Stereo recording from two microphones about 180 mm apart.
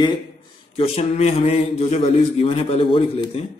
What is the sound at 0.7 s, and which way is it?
A man's voice, 35° left (ahead or behind).